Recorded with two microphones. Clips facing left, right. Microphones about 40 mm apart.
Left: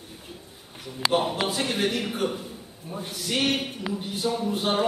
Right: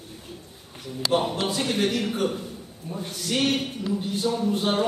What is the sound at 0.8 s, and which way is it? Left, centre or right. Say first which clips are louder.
A man's voice: even; centre.